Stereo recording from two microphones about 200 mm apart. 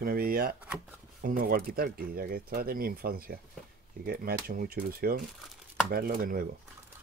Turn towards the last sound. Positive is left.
turn(degrees=-45)  # may be behind; listen again after turning